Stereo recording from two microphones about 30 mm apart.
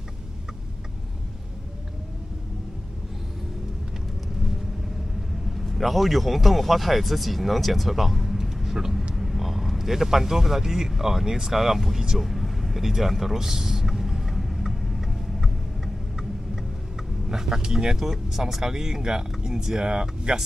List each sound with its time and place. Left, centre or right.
5.5 s speech: centre
12.2 s vehicle: centre
17.6 s speech: centre